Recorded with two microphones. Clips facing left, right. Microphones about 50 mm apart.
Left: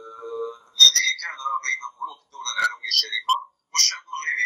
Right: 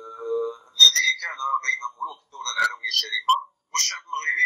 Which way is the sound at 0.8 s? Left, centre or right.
Right.